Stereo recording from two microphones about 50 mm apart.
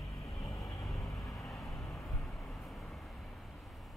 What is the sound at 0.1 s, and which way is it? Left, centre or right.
Vehicle, left.